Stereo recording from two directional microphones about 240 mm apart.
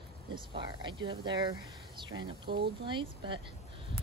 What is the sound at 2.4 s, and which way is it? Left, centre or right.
Speech, right.